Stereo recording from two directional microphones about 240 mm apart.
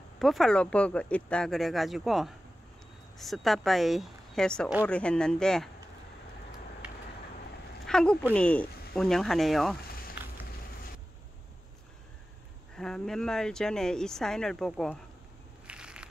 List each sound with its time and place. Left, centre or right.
0.2 s speech: centre
7.8 s speech: centre
12.7 s speech: centre
15.6 s crushing: centre